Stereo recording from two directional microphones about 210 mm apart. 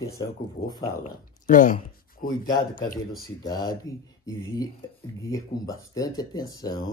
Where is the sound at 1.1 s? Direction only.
40° left (ahead or behind).